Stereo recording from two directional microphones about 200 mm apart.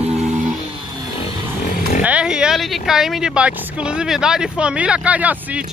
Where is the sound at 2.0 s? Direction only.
5° right (ahead or behind).